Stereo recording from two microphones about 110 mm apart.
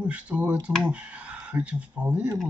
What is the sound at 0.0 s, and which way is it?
Speech, 10° right (ahead or behind).